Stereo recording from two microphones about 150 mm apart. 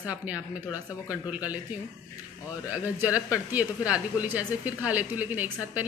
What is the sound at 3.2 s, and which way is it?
Speech, 10° right (ahead or behind).